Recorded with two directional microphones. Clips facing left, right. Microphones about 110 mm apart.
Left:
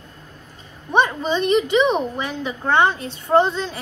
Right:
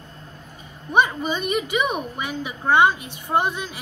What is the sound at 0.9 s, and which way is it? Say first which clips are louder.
A woman's voice: left 2 dB; 10° right (ahead or behind).